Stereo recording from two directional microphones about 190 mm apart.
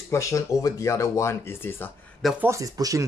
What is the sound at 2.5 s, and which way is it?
Speech, 15° right (ahead or behind).